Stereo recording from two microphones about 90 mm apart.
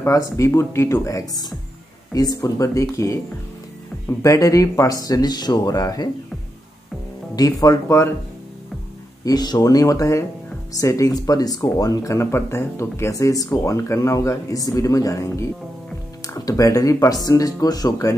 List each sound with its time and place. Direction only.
0.0 s speech: 30° left (ahead or behind)
4.2 s speech: 35° left (ahead or behind)
7.3 s speech: 40° left (ahead or behind)
9.2 s speech: 50° left (ahead or behind)
16.4 s speech: 40° left (ahead or behind)